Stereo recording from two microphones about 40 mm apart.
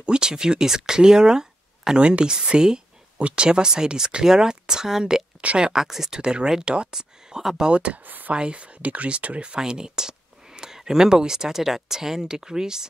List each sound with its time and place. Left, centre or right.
0.0 s speech: right
2.0 s speech: right; by 6.1 s centre
6.1 s speech: centre
7.7 s speech: right
8.0 s speech: right
8.3 s speech: right
9.6 s speech: centre